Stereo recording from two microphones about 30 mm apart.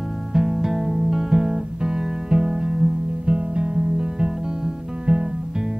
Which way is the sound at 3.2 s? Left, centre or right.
Right.